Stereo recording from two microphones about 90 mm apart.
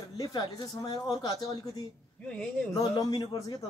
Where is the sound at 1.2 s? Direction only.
50° left (ahead or behind).